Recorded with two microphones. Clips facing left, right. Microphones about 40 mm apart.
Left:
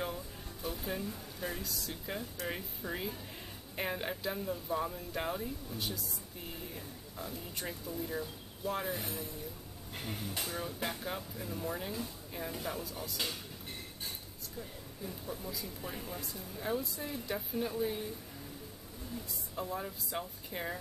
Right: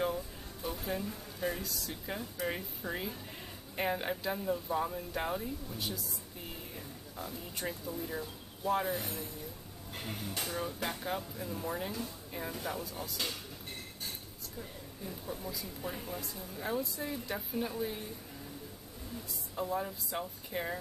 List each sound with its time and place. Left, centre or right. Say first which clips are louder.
0.0 s speech: right 5 dB; centre
7.2 s speech: right 1 dB; centre
10.4 s speech: right 2 dB; centre
15.2 s speech: right 1 dB; centre
19.5 s speech: right 4 dB; centre